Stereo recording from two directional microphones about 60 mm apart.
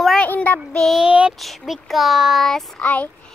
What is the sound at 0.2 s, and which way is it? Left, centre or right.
Child singing, left.